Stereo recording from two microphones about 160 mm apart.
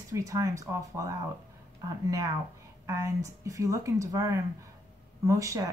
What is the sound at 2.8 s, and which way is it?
Speech, 20° right (ahead or behind).